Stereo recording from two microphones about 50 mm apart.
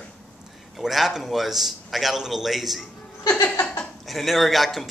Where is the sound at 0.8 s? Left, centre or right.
Centre.